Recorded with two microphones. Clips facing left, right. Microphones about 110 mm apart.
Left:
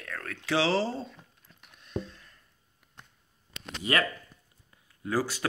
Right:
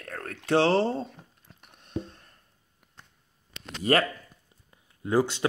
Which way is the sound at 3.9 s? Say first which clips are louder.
Right 5 dB; 45° right (ahead or behind).